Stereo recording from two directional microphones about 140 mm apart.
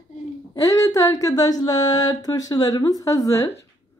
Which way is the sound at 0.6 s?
25° left (ahead or behind).